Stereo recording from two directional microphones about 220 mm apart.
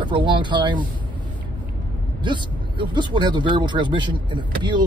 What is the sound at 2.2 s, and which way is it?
Speech, 20° right (ahead or behind).